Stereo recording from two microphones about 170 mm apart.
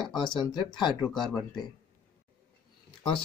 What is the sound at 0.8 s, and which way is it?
Speech, 25° left (ahead or behind).